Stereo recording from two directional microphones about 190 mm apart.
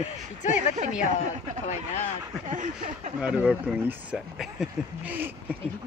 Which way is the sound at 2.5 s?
40° right (ahead or behind).